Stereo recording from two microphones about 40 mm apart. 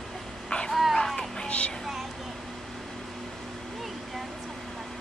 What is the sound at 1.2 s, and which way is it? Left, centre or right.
Music, left.